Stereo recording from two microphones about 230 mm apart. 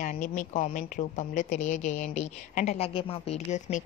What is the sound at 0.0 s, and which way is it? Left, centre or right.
Speech, left.